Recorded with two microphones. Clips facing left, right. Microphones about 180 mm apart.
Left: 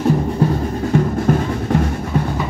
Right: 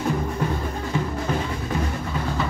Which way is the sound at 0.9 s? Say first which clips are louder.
Left 9 dB; 50° left (ahead or behind).